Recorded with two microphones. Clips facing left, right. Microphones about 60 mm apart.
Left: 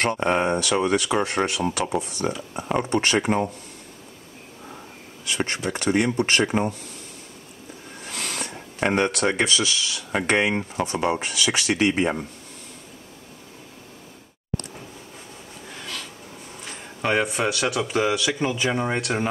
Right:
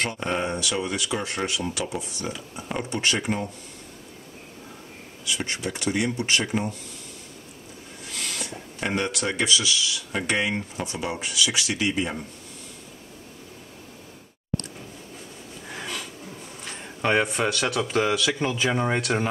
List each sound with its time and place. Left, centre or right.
0.0 s speech: left
5.2 s speech: left
8.0 s a sound: left
9.4 s speech: left
15.7 s a sound: centre
16.6 s speech: centre